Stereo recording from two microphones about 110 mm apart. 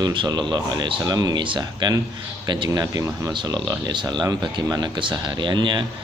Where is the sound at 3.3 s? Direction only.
45° right (ahead or behind).